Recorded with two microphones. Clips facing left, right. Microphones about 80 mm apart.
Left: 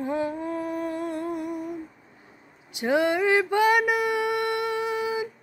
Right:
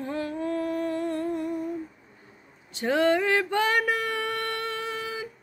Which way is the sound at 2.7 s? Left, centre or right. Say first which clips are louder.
Even; centre.